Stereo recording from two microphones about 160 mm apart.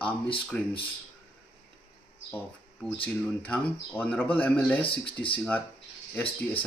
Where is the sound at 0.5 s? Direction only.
10° left (ahead or behind).